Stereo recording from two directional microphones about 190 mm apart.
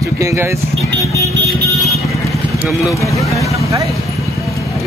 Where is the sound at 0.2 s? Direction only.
15° right (ahead or behind).